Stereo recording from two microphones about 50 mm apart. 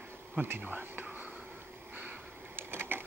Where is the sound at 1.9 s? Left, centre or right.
Right.